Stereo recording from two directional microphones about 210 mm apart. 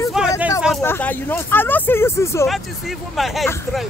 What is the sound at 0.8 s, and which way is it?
Speech, 10° left (ahead or behind).